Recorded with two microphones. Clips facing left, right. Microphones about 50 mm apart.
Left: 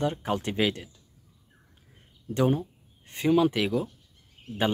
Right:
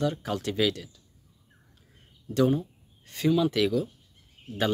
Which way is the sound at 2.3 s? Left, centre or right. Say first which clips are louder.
Right 1 dB; left.